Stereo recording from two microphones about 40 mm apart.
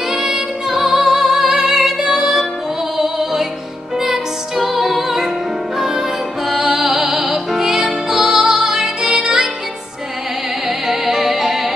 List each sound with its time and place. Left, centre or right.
0.1 s music: centre
6.8 s music: centre
10.9 s music: centre